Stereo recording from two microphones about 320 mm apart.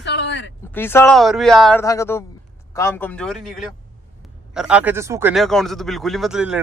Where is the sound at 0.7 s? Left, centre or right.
Centre.